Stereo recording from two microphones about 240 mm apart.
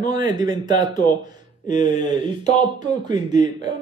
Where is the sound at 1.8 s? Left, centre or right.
Left.